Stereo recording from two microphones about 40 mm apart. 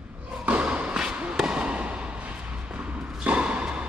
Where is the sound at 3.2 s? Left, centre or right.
Right.